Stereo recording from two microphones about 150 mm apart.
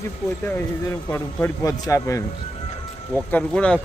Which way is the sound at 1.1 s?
20° left (ahead or behind).